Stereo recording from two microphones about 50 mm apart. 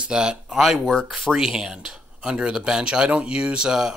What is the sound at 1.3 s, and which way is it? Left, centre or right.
Speech, centre.